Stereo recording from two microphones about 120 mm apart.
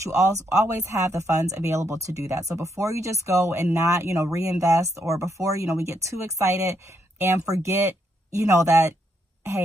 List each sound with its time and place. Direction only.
0.0 s speech: 25° right (ahead or behind)